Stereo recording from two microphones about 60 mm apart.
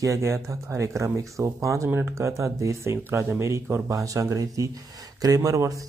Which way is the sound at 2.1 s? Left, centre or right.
Right.